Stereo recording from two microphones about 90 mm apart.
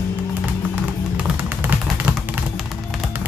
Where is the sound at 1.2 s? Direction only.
20° right (ahead or behind).